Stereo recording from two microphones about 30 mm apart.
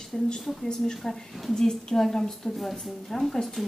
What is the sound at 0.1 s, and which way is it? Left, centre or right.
A woman's voice, centre.